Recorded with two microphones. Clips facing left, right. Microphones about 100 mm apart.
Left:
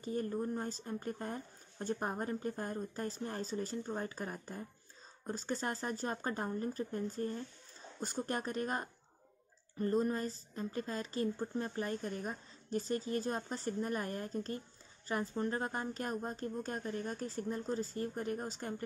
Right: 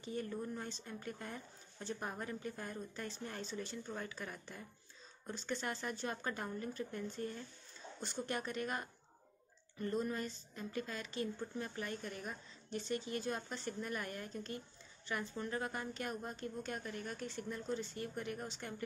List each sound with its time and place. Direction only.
0.0 s speech: 40° left (ahead or behind)